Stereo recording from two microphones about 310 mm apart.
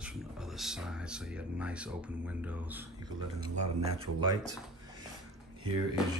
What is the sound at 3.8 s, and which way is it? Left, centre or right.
Speech, centre.